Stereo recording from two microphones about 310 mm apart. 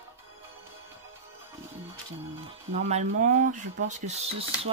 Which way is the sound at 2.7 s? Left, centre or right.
Right.